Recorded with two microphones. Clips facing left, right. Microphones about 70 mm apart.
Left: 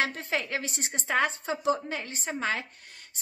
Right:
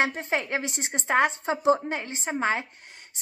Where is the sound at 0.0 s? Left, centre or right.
Right.